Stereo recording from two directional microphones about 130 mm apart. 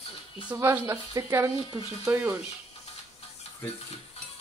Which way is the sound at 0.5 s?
20° right (ahead or behind).